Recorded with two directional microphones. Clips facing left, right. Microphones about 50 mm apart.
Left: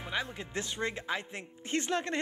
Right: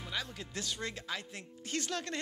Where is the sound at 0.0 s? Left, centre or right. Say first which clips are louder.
Left 4 dB; left.